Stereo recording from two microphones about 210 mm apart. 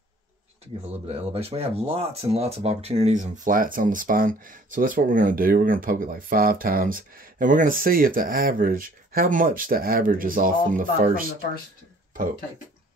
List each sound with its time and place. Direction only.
1.0 s speech: 30° right (ahead or behind)